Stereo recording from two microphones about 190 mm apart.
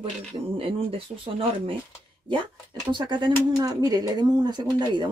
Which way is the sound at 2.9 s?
25° right (ahead or behind).